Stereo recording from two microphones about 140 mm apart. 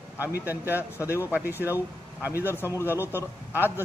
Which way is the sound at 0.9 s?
20° left (ahead or behind).